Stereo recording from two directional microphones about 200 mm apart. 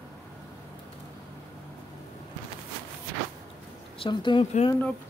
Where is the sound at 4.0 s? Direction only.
25° left (ahead or behind).